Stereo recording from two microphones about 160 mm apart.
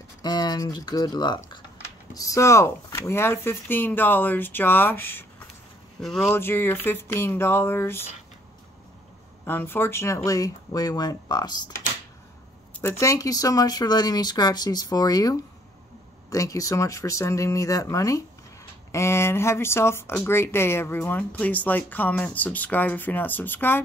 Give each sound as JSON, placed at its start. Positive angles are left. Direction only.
{"t": 0.2, "sound": "speech", "side_deg": 25}
{"t": 5.9, "sound": "speech", "side_deg": 5}
{"t": 6.3, "sound": "speech", "side_deg": 15}
{"t": 9.5, "sound": "speech", "side_deg": 15}
{"t": 13.0, "sound": "speech", "side_deg": 20}